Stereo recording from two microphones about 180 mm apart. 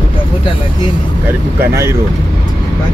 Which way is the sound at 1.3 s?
15° right (ahead or behind).